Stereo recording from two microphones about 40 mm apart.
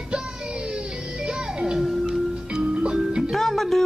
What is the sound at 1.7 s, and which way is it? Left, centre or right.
Music, centre.